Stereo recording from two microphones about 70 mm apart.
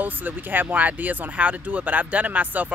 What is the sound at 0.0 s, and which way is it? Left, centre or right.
Speech, right.